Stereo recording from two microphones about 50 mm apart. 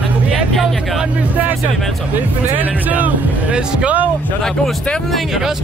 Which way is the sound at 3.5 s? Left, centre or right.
Right.